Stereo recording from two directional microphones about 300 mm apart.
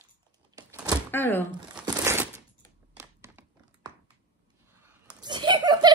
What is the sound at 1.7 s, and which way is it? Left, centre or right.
Crumpling, centre.